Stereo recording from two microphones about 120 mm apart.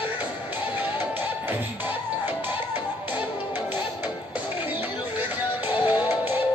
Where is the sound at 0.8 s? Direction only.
15° right (ahead or behind).